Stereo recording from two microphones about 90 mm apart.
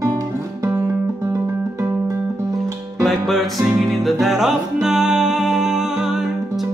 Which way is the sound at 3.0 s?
Centre (ahead or behind).